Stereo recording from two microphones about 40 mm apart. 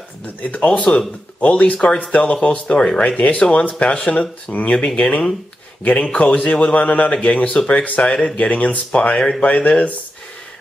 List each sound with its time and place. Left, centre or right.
0.4 s a man's voice: left
4.5 s a man's voice: left
4.7 s a man's voice: left
8.4 s a man's voice: left